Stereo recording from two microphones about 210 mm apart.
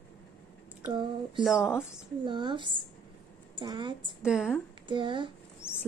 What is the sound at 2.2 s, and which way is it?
Speech, 20° right (ahead or behind).